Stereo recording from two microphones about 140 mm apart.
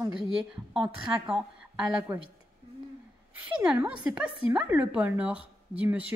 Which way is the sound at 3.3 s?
10° right (ahead or behind).